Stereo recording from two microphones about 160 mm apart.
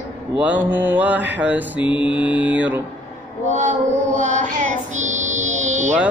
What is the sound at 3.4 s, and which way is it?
Music, 50° right (ahead or behind).